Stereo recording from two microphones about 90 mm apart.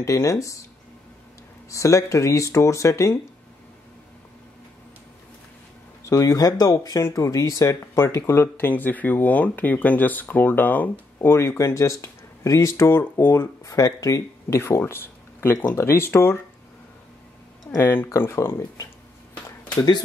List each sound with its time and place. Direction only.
0.0 s speech: 35° left (ahead or behind)
1.7 s speech: 35° left (ahead or behind)
6.0 s speech: 40° left (ahead or behind); by 10.9 s 20° left (ahead or behind)
11.2 s speech: 30° left (ahead or behind)
13.7 s speech: 40° left (ahead or behind)
17.7 s speech: 25° left (ahead or behind)